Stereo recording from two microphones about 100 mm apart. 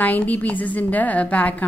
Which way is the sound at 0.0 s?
15° left (ahead or behind).